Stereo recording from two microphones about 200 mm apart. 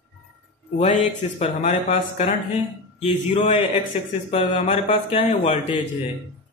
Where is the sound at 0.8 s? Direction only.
35° left (ahead or behind).